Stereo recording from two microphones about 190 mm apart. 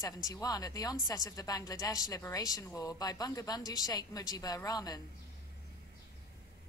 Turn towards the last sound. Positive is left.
turn(degrees=20)  # may be behind; listen again after turning